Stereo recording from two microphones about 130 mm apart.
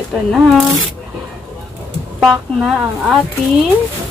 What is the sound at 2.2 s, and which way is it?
Speech, 5° right (ahead or behind).